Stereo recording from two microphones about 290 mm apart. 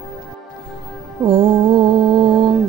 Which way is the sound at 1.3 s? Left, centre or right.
Centre.